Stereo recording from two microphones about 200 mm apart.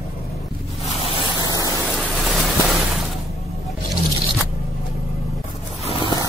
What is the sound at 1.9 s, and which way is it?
Vehicle, centre (ahead or behind).